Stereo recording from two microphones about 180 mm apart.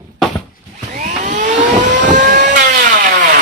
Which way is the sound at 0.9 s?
45° right (ahead or behind).